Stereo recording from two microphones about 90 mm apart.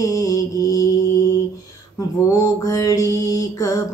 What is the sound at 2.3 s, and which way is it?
Mantra, 40° left (ahead or behind).